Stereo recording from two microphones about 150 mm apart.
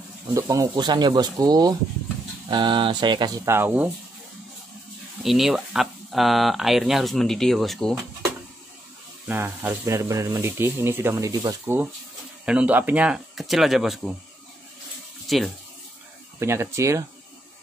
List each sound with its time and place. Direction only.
0.3 s speech: 20° right (ahead or behind)
3.4 s speech: 15° right (ahead or behind)
5.2 s speech: centre (ahead or behind)
9.3 s speech: 15° right (ahead or behind)
15.2 s speech: centre (ahead or behind)
16.3 s speech: 20° right (ahead or behind)